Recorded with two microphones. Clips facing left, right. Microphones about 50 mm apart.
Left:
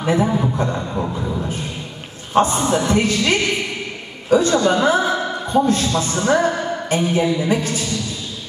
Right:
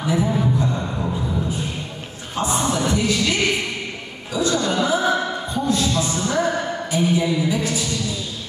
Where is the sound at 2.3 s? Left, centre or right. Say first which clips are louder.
Left 6 dB; left.